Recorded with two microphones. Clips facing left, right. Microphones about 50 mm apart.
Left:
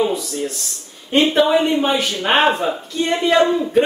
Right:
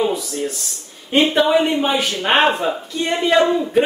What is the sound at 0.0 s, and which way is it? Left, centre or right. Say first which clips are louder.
Speech: even; centre.